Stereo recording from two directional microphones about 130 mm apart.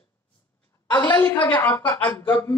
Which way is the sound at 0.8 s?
15° left (ahead or behind).